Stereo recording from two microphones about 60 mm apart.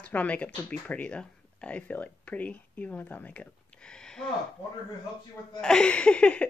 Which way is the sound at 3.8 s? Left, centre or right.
Centre.